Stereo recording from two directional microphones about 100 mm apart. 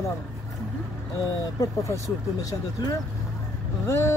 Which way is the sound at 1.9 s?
35° left (ahead or behind).